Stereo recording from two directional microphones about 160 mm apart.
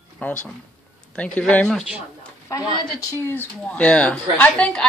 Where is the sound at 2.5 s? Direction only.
20° left (ahead or behind).